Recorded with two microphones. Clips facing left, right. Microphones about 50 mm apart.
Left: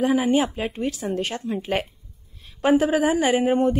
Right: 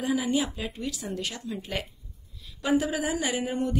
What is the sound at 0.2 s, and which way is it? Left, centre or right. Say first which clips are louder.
A woman's voice: left 7 dB; left.